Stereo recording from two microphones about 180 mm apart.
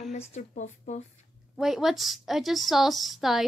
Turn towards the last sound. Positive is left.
turn(degrees=0)  # may be behind; listen again after turning